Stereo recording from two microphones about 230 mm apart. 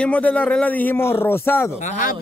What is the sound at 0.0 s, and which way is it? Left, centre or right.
A man's voice, centre.